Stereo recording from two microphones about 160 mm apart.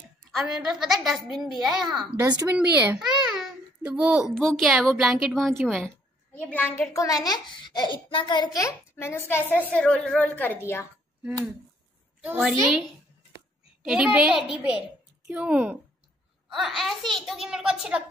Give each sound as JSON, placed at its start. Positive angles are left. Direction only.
{"t": 0.3, "sound": "a woman's voice", "side_deg": 0}
{"t": 2.1, "sound": "speech", "side_deg": -20}
{"t": 2.9, "sound": "babbling", "side_deg": 0}
{"t": 4.4, "sound": "a woman's voice", "side_deg": 0}
{"t": 12.2, "sound": "a woman's voice", "side_deg": -5}
{"t": 13.8, "sound": "a child's voice", "side_deg": -5}